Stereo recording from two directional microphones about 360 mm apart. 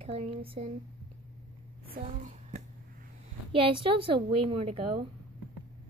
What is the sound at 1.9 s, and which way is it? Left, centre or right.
A woman's voice, right.